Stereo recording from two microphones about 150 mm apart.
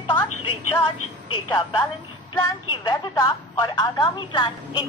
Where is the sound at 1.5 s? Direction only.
30° left (ahead or behind).